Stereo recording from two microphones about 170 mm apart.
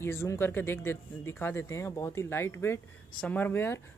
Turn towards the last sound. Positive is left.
turn(degrees=15)  # may be behind; listen again after turning